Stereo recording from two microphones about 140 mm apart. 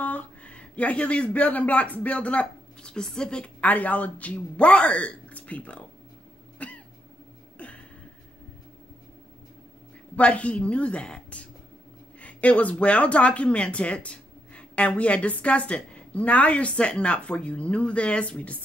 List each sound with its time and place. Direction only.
0.0 s speech: 10° left (ahead or behind)
6.6 s cat: 10° left (ahead or behind)
7.5 s a sound: 10° left (ahead or behind)
10.1 s speech: 10° left (ahead or behind)